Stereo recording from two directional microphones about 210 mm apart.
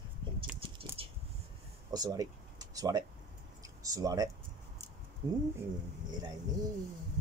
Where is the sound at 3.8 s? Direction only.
15° right (ahead or behind).